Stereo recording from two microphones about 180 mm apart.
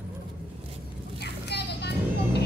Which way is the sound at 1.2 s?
65° left (ahead or behind).